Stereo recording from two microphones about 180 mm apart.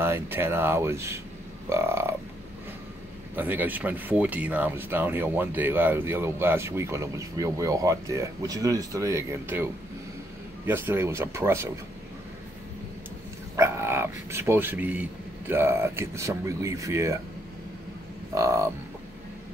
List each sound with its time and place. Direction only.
0.0 s speech: 15° right (ahead or behind)
3.3 s speech: 10° right (ahead or behind)
10.7 s speech: 10° right (ahead or behind)
13.6 s speech: 15° right (ahead or behind)
18.3 s speech: 15° right (ahead or behind)